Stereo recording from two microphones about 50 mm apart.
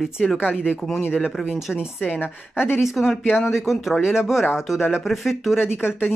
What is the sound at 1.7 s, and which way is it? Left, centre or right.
Speech, centre.